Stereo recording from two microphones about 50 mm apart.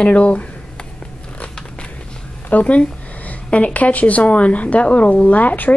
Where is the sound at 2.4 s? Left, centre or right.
Left.